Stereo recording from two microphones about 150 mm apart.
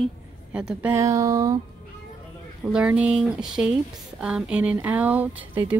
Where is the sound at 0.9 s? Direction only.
20° right (ahead or behind).